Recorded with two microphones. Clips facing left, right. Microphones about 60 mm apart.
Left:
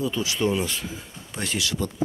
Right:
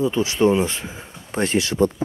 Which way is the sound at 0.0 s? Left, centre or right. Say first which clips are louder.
Right 7 dB; right.